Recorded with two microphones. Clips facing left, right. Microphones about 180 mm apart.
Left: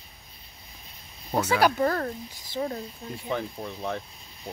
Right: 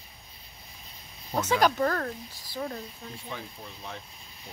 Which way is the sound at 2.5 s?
25° left (ahead or behind).